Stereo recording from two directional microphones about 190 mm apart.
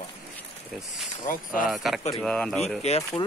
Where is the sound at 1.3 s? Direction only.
45° left (ahead or behind).